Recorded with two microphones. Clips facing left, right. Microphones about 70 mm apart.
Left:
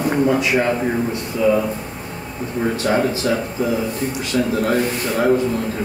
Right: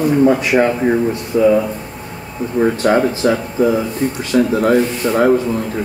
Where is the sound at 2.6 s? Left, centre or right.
Right.